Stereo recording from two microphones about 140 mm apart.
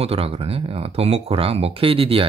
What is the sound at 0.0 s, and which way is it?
Speech, 45° right (ahead or behind).